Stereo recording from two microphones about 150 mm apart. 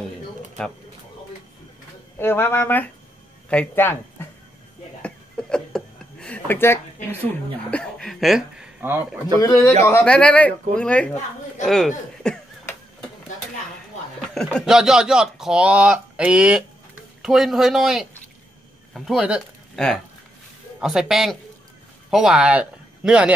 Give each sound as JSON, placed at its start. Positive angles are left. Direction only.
{"t": 2.1, "sound": "speech", "side_deg": 15}
{"t": 5.0, "sound": "a sound", "side_deg": 5}
{"t": 7.7, "sound": "speech", "side_deg": 5}
{"t": 9.4, "sound": "speech", "side_deg": 20}
{"t": 10.0, "sound": "speech", "side_deg": 10}
{"t": 14.3, "sound": "speech", "side_deg": 5}
{"t": 20.8, "sound": "speech", "side_deg": -5}